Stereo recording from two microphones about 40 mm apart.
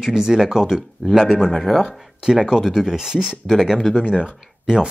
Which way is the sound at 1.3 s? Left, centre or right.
Left.